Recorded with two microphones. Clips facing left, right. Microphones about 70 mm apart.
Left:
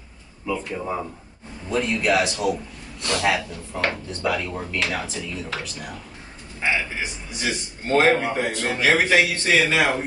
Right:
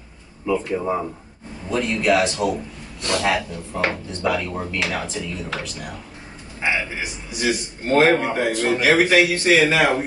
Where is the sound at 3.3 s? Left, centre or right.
Centre.